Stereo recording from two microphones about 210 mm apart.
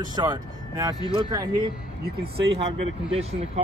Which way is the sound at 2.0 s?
50° right (ahead or behind).